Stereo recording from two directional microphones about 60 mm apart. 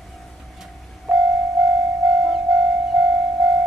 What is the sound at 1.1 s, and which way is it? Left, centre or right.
Music, right.